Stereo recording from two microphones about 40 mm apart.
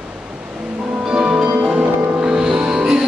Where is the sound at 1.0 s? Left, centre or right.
Right.